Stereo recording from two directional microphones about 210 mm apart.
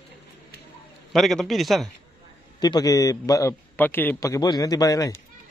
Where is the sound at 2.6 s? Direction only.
20° left (ahead or behind).